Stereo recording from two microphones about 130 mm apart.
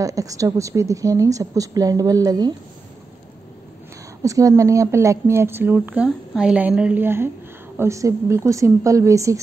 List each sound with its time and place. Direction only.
0.0 s a woman's voice: 25° right (ahead or behind)
4.2 s a woman's voice: 25° right (ahead or behind)